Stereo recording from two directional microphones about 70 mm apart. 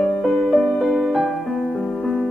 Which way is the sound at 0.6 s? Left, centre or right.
Centre.